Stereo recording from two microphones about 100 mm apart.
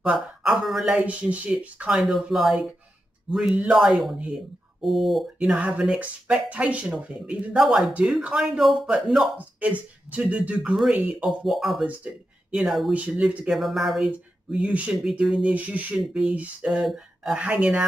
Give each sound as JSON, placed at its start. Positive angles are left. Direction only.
{"t": 0.0, "sound": "speech", "side_deg": -10}
{"t": 0.9, "sound": "speech", "side_deg": -15}
{"t": 11.8, "sound": "speech", "side_deg": -10}
{"t": 12.6, "sound": "speech", "side_deg": 0}
{"t": 12.9, "sound": "speech", "side_deg": -15}